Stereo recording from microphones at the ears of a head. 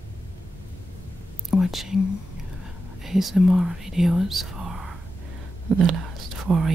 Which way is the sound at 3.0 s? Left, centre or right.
Centre.